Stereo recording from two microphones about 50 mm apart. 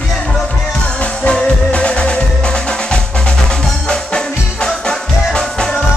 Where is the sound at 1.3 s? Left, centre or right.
Centre.